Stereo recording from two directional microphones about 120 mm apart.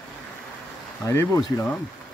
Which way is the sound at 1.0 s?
25° left (ahead or behind).